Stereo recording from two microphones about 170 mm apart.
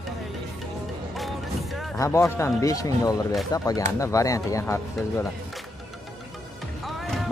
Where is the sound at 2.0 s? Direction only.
15° left (ahead or behind).